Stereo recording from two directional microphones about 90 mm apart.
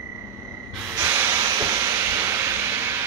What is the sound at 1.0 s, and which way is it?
Steam, 30° right (ahead or behind).